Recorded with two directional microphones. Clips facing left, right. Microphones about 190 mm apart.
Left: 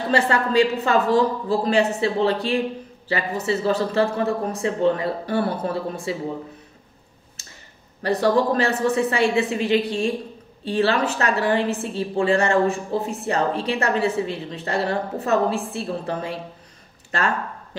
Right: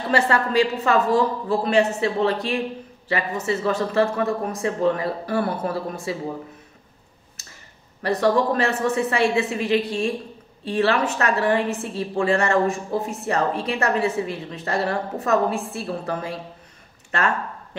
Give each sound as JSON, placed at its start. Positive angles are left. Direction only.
{"t": 0.1, "sound": "a woman's voice", "side_deg": 30}
{"t": 8.0, "sound": "a woman's voice", "side_deg": 30}